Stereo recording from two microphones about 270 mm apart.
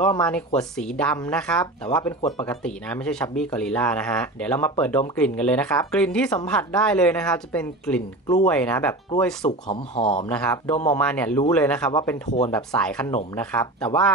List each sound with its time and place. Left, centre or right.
0.6 s speech: centre
9.7 s speech: left
10.2 s speech: centre
11.9 s speech: centre